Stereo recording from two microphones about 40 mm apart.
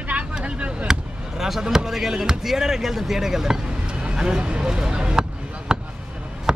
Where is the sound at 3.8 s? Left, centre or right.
Right.